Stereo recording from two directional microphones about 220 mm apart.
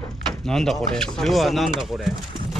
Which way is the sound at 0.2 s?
Centre (ahead or behind).